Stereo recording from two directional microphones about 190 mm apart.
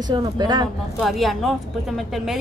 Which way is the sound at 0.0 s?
20° right (ahead or behind).